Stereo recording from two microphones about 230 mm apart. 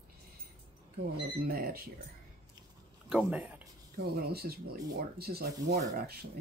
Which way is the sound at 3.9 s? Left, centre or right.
Right.